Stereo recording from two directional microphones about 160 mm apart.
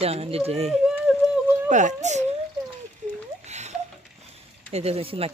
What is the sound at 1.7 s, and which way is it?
Speech, 50° right (ahead or behind).